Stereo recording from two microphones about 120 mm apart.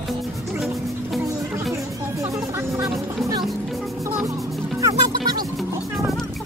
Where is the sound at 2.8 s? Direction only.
35° right (ahead or behind).